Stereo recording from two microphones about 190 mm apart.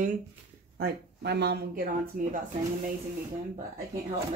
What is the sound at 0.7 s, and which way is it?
Speech, 60° right (ahead or behind).